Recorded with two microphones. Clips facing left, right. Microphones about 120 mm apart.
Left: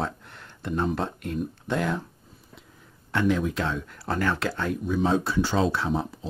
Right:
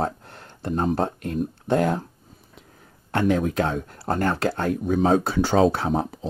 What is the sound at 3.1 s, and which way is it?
Speech, 50° right (ahead or behind).